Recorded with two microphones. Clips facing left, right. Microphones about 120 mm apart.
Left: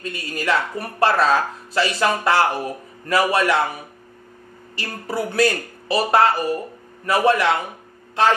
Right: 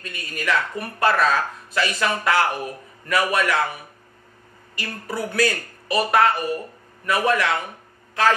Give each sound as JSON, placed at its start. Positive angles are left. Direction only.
{"t": 0.0, "sound": "speech", "side_deg": 30}
{"t": 4.7, "sound": "speech", "side_deg": 30}